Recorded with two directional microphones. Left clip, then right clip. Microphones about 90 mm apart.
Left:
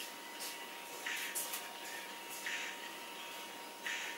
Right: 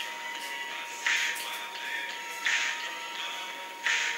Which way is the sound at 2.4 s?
30° right (ahead or behind).